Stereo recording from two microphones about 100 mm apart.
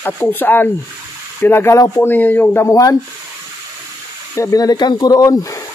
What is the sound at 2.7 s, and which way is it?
Speech, 35° left (ahead or behind).